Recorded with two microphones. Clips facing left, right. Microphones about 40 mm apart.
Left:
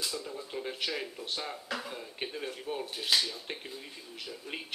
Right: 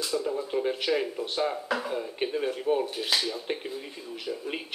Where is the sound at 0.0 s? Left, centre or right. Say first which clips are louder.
Right 8 dB; centre.